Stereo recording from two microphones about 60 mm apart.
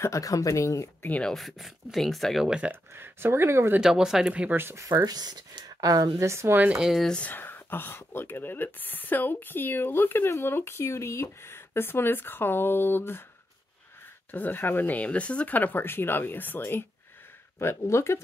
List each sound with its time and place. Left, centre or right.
0.2 s speech: left
1.3 s speech: centre
2.4 s speech: centre
2.7 s speech: right
3.8 s speech: centre
4.6 s speech: right
4.8 s speech: right
6.2 s speech: right
7.2 s speech: left
14.3 s speech: left
17.6 s speech: left